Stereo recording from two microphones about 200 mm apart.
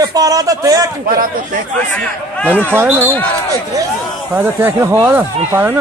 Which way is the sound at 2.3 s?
10° left (ahead or behind).